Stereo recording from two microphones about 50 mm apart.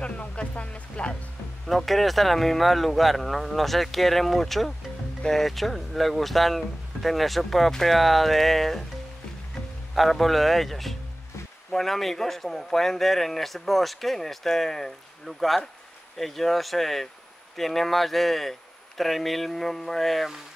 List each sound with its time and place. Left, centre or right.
0.0 s music: left
1.7 s a man's voice: centre
9.9 s a man's voice: centre